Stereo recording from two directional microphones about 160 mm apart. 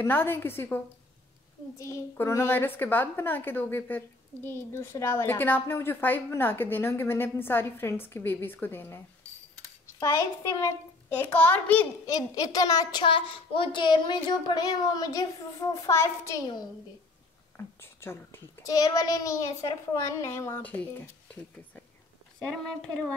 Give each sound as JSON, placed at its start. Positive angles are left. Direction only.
{"t": 0.0, "sound": "a woman's voice", "side_deg": 15}
{"t": 12.1, "sound": "a woman's voice", "side_deg": 25}
{"t": 22.4, "sound": "speech", "side_deg": 5}